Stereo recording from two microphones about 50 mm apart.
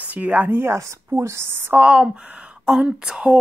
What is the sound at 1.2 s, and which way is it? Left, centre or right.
Speech, right.